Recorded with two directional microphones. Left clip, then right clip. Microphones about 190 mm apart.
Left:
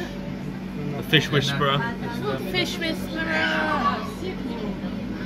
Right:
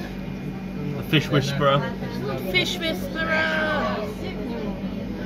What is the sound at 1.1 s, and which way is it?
Speech, 20° right (ahead or behind).